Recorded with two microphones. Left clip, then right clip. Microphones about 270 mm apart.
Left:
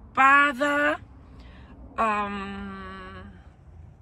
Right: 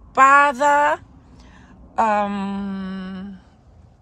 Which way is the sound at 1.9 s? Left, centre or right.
Right.